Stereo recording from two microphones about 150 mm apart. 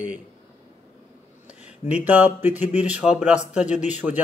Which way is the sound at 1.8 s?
10° right (ahead or behind).